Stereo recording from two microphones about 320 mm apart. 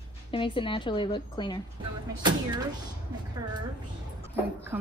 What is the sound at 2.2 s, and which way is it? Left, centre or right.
Speech, centre.